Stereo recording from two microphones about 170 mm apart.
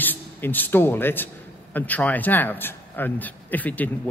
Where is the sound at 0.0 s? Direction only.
10° left (ahead or behind).